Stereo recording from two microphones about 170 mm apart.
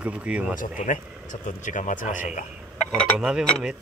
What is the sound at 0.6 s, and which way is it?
Speech, 50° left (ahead or behind).